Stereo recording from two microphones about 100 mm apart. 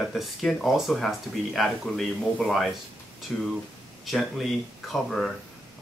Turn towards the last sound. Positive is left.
turn(degrees=5)  # may be behind; listen again after turning